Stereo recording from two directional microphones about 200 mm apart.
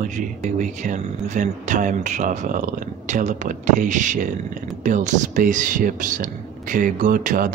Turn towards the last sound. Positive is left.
turn(degrees=-45)  # may be behind; listen again after turning